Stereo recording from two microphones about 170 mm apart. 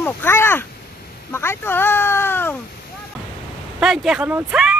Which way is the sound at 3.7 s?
5° right (ahead or behind).